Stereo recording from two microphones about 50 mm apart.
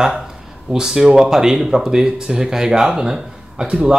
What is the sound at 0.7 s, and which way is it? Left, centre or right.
Speech, centre.